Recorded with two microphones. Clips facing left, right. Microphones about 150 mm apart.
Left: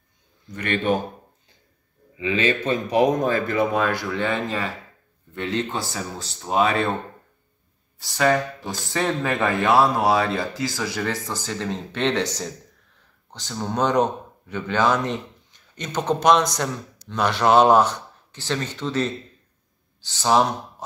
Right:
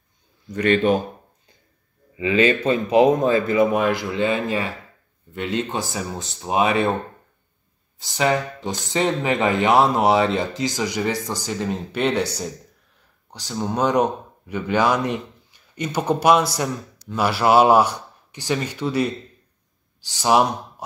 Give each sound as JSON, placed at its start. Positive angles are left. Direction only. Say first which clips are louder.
{"t": 2.1, "sound": "a man's voice", "louder": "right 4 dB", "side_deg": -35}
{"t": 3.3, "sound": "speech", "louder": "right 3 dB", "side_deg": -15}
{"t": 8.0, "sound": "speech", "louder": "even", "side_deg": -20}
{"t": 13.3, "sound": "a man's voice", "louder": "right 3 dB", "side_deg": -10}